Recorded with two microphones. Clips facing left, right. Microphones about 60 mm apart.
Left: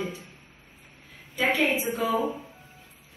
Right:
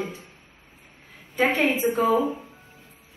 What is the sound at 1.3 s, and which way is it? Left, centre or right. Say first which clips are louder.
A woman's voice: right 3 dB; right.